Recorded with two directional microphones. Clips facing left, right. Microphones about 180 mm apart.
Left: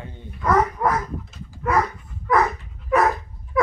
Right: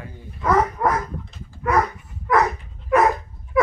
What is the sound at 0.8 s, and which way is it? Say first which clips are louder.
Dog: right 1 dB; centre (ahead or behind).